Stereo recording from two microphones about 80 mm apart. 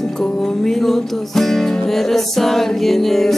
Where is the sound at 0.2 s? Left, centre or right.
Centre.